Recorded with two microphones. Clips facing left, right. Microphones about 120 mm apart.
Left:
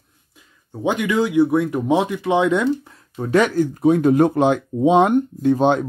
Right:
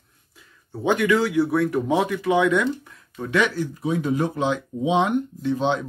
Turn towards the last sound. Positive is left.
turn(degrees=50)  # may be behind; listen again after turning